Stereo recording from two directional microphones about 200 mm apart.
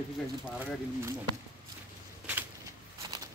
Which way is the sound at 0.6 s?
10° right (ahead or behind).